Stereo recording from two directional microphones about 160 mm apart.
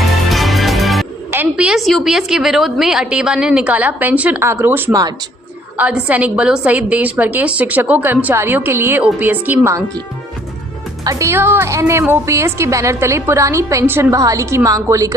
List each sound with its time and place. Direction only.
0.3 s music: centre (ahead or behind)
1.3 s a woman's voice: 10° right (ahead or behind)
11.1 s a woman's voice: 20° right (ahead or behind)